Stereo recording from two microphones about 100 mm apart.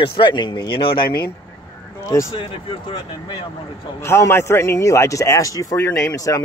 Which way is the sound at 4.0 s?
25° left (ahead or behind).